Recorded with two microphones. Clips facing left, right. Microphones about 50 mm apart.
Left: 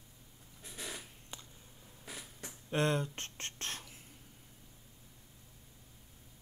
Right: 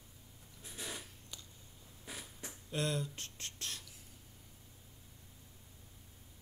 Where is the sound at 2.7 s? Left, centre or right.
Left.